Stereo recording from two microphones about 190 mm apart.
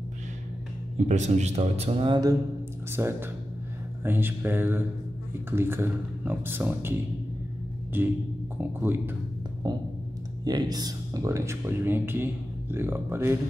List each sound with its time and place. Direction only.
0.9 s speech: 40° right (ahead or behind)
3.0 s speech: 10° right (ahead or behind)
10.4 s speech: 20° right (ahead or behind)